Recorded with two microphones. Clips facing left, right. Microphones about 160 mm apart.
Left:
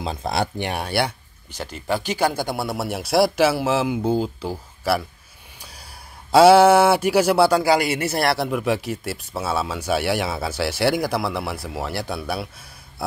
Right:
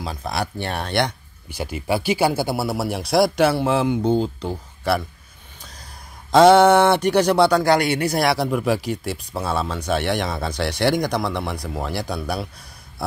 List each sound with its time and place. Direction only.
0.0 s speech: 25° left (ahead or behind)
0.6 s speech: 10° left (ahead or behind)
1.5 s speech: 10° right (ahead or behind)